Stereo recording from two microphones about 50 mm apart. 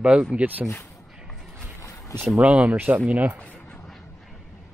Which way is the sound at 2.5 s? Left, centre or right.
Centre.